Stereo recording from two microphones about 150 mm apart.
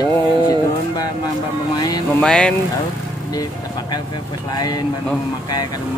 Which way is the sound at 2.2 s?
5° left (ahead or behind).